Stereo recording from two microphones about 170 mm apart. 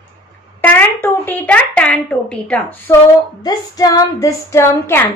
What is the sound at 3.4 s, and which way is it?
A woman's voice, 20° left (ahead or behind).